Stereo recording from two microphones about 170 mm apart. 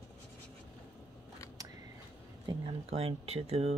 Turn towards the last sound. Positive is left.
turn(degrees=-35)  # may be behind; listen again after turning